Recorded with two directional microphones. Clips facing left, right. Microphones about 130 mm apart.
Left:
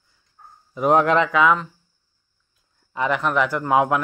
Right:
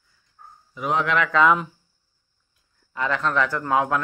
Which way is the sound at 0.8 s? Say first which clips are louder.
Left 7 dB; 45° left (ahead or behind).